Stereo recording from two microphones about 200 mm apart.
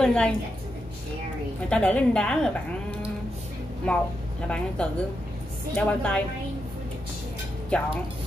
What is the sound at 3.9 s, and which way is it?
A woman's voice, 5° left (ahead or behind).